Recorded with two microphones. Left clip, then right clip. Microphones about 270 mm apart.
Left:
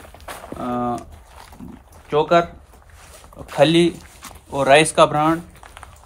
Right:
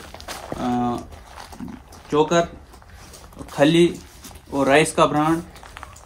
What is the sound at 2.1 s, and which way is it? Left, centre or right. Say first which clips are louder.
Speech: left 2 dB; left.